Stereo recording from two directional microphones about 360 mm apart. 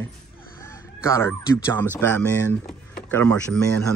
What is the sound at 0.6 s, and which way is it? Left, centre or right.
Speech, centre.